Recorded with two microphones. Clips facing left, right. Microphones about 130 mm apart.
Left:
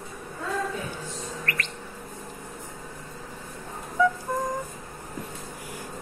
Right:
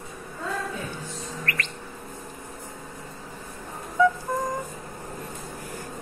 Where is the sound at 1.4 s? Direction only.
90° right.